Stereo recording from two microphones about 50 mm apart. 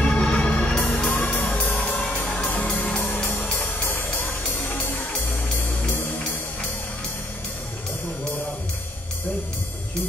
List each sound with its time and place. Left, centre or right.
0.0 s music: left